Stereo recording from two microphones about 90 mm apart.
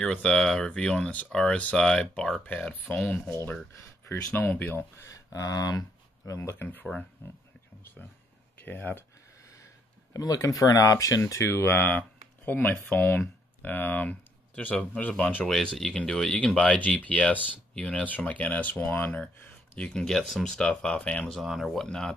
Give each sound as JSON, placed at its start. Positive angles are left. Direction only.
{"t": 0.0, "sound": "speech", "side_deg": 10}
{"t": 2.4, "sound": "speech", "side_deg": 15}
{"t": 5.0, "sound": "speech", "side_deg": 40}
{"t": 6.5, "sound": "speech", "side_deg": 20}
{"t": 8.5, "sound": "speech", "side_deg": 20}
{"t": 10.1, "sound": "speech", "side_deg": 40}
{"t": 11.4, "sound": "speech", "side_deg": 25}
{"t": 19.8, "sound": "speech", "side_deg": 10}
{"t": 21.3, "sound": "speech", "side_deg": 0}
{"t": 21.8, "sound": "speech", "side_deg": 5}